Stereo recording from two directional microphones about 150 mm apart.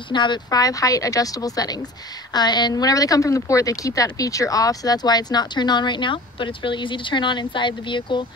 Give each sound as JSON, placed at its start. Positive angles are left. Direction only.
{"t": 0.1, "sound": "a woman's voice", "side_deg": 30}